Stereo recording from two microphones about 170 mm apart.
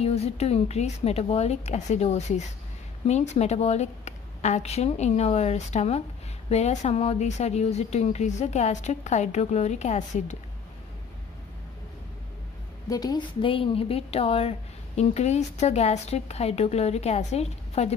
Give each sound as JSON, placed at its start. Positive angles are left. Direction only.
{"t": 0.0, "sound": "a woman's voice", "side_deg": 40}
{"t": 12.9, "sound": "a woman's voice", "side_deg": 25}